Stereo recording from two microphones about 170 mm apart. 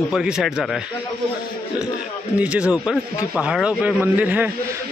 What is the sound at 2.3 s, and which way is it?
Speech, 5° right (ahead or behind).